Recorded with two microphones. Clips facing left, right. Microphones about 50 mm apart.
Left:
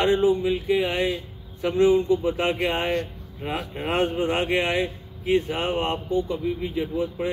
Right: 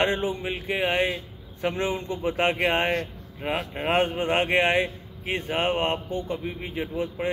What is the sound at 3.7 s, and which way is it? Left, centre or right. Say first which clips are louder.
A man's voice: even; right.